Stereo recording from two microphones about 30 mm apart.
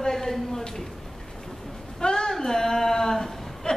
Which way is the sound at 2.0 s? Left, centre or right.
Left.